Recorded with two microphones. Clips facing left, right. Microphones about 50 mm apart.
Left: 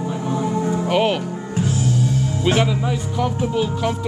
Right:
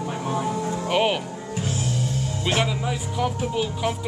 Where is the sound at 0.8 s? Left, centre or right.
Centre.